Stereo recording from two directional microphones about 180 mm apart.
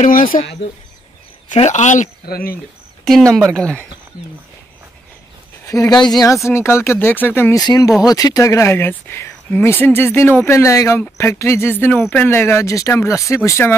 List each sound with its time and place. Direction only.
0.0 s speech: 50° left (ahead or behind)
1.5 s speech: 40° left (ahead or behind); by 2.6 s 55° left (ahead or behind)
3.3 s speech: 5° left (ahead or behind)
5.7 s speech: 20° left (ahead or behind)